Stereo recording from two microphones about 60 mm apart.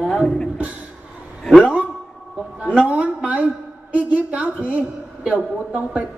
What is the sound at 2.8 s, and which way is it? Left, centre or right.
Child singing, right.